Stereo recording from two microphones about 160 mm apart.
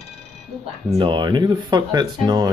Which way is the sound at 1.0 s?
30° right (ahead or behind).